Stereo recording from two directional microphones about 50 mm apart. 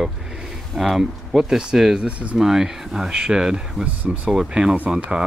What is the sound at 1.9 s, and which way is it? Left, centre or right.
Speech, right.